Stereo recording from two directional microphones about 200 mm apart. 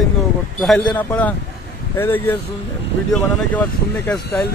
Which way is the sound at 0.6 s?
Centre (ahead or behind).